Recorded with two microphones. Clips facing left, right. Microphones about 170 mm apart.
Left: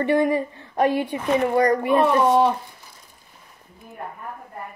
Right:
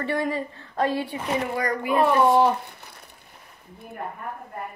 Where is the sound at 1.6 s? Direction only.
35° left (ahead or behind).